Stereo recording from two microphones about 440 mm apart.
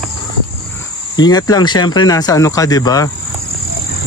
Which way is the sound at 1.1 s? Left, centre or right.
Centre.